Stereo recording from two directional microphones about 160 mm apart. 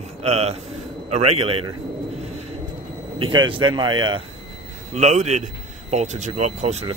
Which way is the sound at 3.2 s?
30° right (ahead or behind).